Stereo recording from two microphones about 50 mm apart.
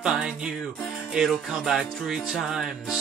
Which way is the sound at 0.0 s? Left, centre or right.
Centre.